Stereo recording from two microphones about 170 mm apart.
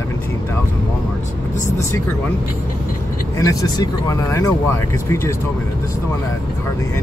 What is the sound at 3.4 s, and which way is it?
Speech, 20° left (ahead or behind).